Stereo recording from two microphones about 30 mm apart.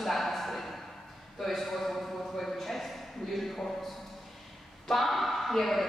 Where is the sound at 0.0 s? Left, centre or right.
Centre.